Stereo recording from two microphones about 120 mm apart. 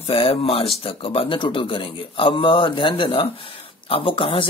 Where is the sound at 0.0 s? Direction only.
50° left (ahead or behind).